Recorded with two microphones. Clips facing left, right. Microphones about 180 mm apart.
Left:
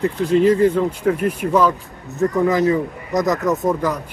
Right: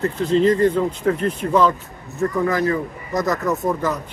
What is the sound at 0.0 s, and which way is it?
A man's voice, 10° left (ahead or behind).